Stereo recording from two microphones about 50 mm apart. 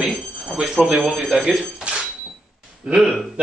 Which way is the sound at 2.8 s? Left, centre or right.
Centre.